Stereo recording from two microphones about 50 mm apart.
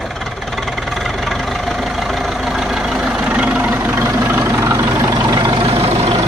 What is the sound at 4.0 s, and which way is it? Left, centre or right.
Vehicle, right.